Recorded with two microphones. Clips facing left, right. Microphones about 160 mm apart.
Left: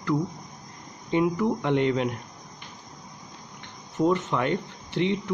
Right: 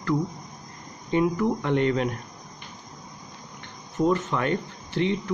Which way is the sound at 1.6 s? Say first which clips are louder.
Even; 15° left (ahead or behind).